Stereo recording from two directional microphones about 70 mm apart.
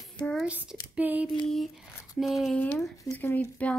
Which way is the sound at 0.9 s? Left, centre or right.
Right.